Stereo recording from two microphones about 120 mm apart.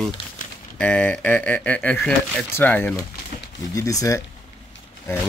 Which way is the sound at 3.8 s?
30° left (ahead or behind).